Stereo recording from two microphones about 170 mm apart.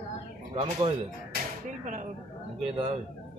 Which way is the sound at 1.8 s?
45° right (ahead or behind).